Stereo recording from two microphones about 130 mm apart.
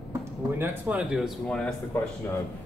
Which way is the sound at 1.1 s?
Centre (ahead or behind).